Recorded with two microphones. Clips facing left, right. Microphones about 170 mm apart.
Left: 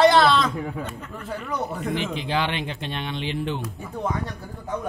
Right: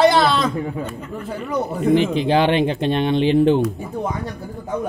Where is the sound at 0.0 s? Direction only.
5° right (ahead or behind).